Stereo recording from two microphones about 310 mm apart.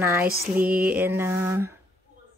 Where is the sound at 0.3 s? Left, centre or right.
Right.